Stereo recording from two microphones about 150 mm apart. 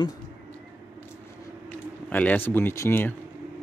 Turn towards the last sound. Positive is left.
turn(degrees=15)  # may be behind; listen again after turning